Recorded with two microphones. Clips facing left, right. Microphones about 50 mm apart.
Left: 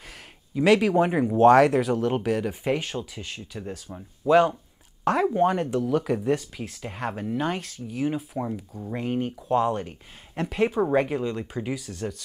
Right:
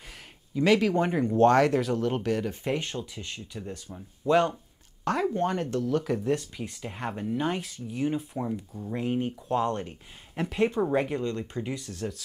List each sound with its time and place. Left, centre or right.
0.6 s speech: centre
3.0 s speech: centre